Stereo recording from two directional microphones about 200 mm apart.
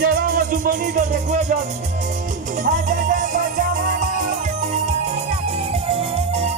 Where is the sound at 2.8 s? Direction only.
40° right (ahead or behind).